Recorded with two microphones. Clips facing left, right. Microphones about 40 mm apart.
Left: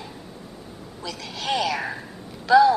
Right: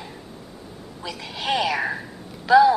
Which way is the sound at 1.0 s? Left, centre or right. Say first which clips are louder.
Right 2 dB; centre.